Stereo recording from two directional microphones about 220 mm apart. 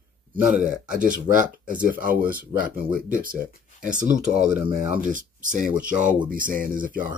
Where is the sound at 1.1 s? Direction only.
35° right (ahead or behind).